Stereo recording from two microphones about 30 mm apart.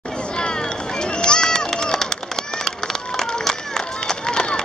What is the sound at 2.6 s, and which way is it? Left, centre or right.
Run, centre.